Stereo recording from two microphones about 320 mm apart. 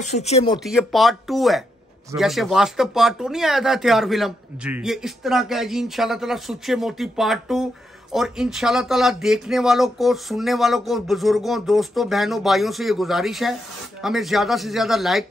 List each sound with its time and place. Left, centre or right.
0.0 s speech: centre
0.7 s speech: centre